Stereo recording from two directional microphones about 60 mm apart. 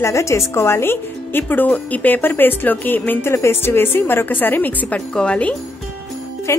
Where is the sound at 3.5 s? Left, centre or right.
Left.